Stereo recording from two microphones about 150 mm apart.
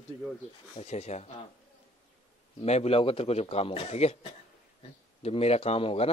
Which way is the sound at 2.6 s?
45° left (ahead or behind).